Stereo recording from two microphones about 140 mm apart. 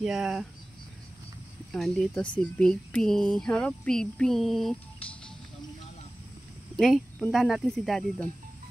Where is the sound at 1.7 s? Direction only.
Centre (ahead or behind).